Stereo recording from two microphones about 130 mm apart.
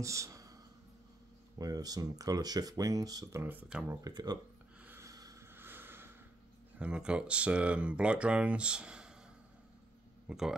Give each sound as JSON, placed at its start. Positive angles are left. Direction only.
{"t": 0.0, "sound": "speech", "side_deg": -25}
{"t": 1.6, "sound": "speech", "side_deg": -30}
{"t": 3.9, "sound": "speech", "side_deg": -30}
{"t": 4.8, "sound": "a sound", "side_deg": -20}
{"t": 6.8, "sound": "speech", "side_deg": -10}
{"t": 10.2, "sound": "speech", "side_deg": -5}